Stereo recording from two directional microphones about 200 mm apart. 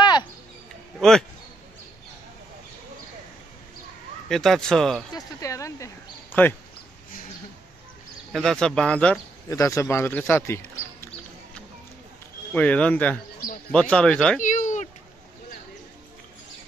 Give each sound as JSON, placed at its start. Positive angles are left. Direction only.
{"t": 0.0, "sound": "a sound", "side_deg": 20}
{"t": 0.9, "sound": "speech", "side_deg": 0}
{"t": 4.3, "sound": "speech", "side_deg": 0}
{"t": 5.1, "sound": "speech", "side_deg": 15}
{"t": 8.3, "sound": "speech", "side_deg": 0}
{"t": 9.5, "sound": "speech", "side_deg": 15}
{"t": 12.5, "sound": "speech", "side_deg": 5}
{"t": 14.4, "sound": "a sound", "side_deg": 40}